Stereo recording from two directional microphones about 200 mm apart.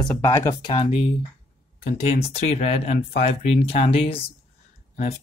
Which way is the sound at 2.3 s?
35° left (ahead or behind).